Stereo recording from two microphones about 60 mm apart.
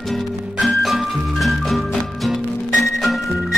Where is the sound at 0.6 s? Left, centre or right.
Centre.